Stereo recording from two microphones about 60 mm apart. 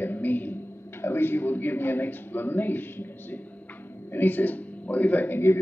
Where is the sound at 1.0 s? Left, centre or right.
Left.